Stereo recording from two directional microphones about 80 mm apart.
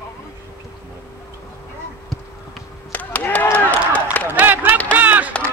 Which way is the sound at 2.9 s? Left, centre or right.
Left.